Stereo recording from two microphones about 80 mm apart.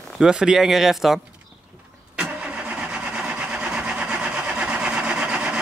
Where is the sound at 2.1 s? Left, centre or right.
Centre.